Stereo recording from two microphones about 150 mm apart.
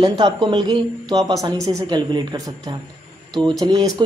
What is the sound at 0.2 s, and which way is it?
Speech, 30° right (ahead or behind).